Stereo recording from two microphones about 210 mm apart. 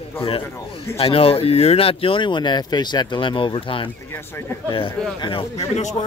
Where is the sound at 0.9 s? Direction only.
30° left (ahead or behind).